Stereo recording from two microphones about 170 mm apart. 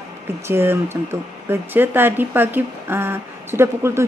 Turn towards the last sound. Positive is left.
turn(degrees=-15)  # may be behind; listen again after turning